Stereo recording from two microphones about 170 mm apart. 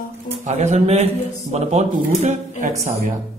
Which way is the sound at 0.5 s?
40° right (ahead or behind).